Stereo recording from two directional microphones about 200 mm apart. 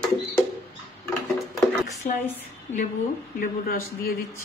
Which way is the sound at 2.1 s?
40° left (ahead or behind).